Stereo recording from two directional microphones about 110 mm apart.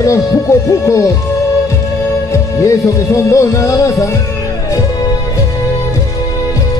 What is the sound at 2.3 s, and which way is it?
Music, 30° left (ahead or behind).